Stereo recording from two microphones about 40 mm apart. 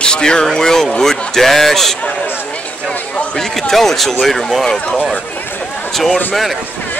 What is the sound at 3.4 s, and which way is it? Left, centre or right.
Speech, centre.